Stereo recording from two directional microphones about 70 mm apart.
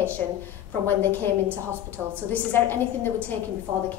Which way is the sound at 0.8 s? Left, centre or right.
Left.